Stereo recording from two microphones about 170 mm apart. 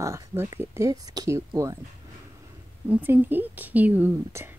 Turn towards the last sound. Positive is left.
turn(degrees=-15)  # may be behind; listen again after turning